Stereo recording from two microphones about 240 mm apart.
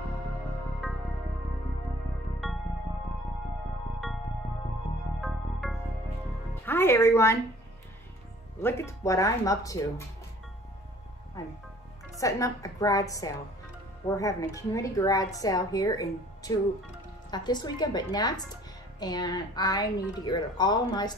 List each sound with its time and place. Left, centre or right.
0.8 s music: centre
2.4 s music: centre
5.2 s music: centre
6.6 s a woman's voice: centre
8.6 s a woman's voice: centre
12.2 s a woman's voice: centre